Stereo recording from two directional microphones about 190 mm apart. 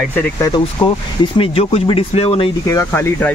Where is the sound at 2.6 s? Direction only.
15° left (ahead or behind).